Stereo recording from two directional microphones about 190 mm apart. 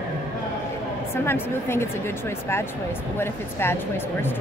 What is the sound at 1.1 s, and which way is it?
A woman's voice, 10° left (ahead or behind).